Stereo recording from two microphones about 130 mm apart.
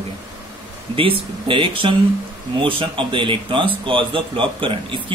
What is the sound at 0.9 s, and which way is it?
Speech, 40° right (ahead or behind).